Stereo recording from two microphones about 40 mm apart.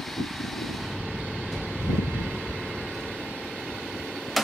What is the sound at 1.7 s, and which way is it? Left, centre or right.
Vehicle, right.